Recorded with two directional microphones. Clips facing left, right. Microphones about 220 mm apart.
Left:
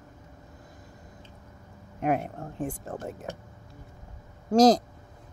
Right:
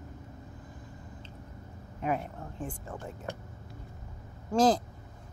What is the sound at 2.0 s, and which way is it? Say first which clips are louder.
Speech: left 5 dB; 65° left (ahead or behind).